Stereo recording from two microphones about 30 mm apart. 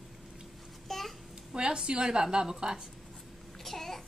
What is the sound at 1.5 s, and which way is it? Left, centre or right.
Speech, right.